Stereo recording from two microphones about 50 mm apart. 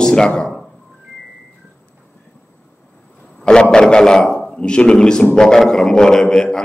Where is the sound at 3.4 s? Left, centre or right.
Centre.